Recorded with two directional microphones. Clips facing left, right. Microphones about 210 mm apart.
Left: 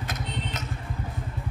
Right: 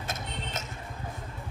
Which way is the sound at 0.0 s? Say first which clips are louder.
Left 3 dB; 25° right (ahead or behind).